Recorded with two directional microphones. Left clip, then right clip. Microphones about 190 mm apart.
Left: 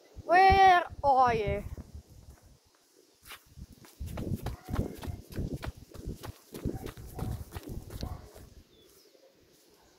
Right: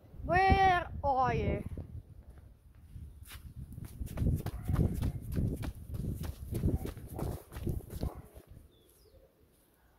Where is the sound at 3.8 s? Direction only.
50° right (ahead or behind).